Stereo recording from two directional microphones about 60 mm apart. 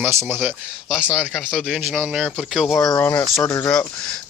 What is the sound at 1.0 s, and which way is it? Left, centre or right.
Speech, centre.